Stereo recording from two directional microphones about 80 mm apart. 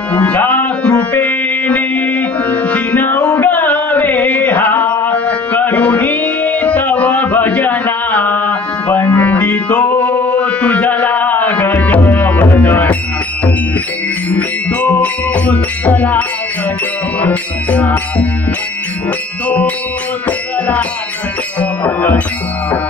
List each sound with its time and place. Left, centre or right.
0.1 s music: centre
14.3 s music: centre
20.2 s music: centre